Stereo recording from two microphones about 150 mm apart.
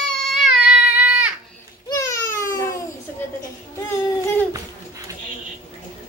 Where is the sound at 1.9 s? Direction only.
20° left (ahead or behind).